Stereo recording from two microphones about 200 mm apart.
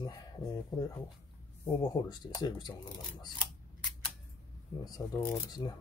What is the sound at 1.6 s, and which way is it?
Speech, 20° left (ahead or behind).